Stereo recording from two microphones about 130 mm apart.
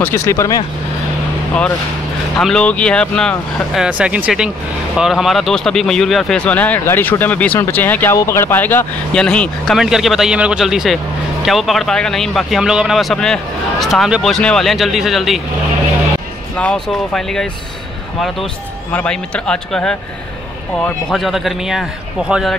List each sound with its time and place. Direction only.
0.0 s speech: 20° left (ahead or behind)
2.3 s speech: 5° left (ahead or behind)
3.8 s a man's voice: 10° right (ahead or behind)
16.5 s a man's voice: 5° left (ahead or behind)